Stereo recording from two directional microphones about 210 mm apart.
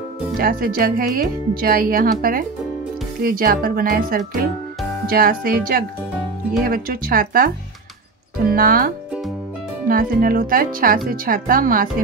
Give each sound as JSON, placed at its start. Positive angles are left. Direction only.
{"t": 0.4, "sound": "speech", "side_deg": -45}
{"t": 8.5, "sound": "speech", "side_deg": -45}